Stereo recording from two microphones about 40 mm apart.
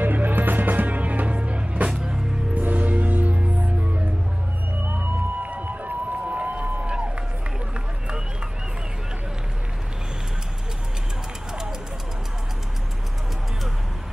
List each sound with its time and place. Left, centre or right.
0.0 s music: right
1.9 s music: centre
2.5 s music: right
4.9 s run: right